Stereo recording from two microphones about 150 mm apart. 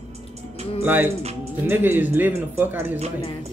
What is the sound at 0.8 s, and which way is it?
Speech, 15° right (ahead or behind).